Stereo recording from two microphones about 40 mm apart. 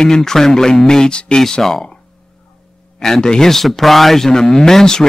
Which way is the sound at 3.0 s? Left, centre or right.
Centre.